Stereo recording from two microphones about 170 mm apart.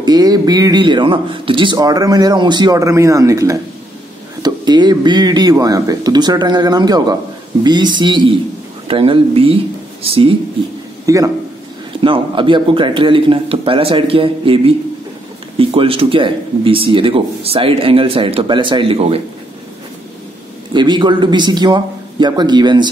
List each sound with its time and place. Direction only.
0.0 s speech: 25° right (ahead or behind)
11.1 s speech: 20° right (ahead or behind)
12.0 s speech: 30° right (ahead or behind)
20.7 s speech: 25° right (ahead or behind)